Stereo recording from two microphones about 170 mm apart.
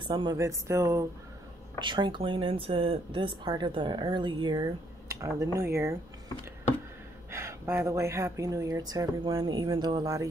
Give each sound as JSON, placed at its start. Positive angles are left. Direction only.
{"t": 0.0, "sound": "speech", "side_deg": -25}
{"t": 1.8, "sound": "speech", "side_deg": -30}
{"t": 7.2, "sound": "speech", "side_deg": -15}